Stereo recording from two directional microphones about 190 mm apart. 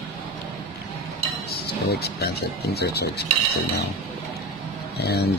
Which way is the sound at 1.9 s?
60° left (ahead or behind).